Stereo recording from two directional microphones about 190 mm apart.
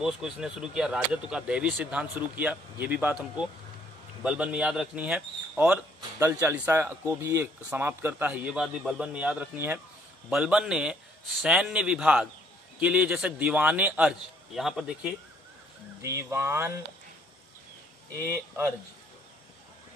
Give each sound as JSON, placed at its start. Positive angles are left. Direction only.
{"t": 0.0, "sound": "a man's voice", "side_deg": -5}
{"t": 16.0, "sound": "speech", "side_deg": -15}
{"t": 18.1, "sound": "speech", "side_deg": -15}